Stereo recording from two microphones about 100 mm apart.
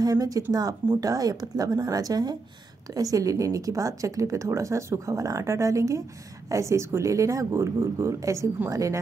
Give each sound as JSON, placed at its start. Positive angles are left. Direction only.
{"t": 0.0, "sound": "speech", "side_deg": -40}